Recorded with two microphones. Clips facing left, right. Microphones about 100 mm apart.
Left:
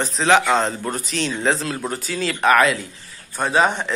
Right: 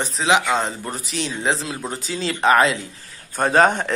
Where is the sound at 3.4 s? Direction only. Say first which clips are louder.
Right 2 dB; 45° right (ahead or behind).